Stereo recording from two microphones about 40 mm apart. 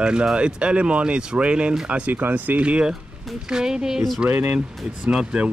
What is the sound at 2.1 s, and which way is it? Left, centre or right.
Speech, right.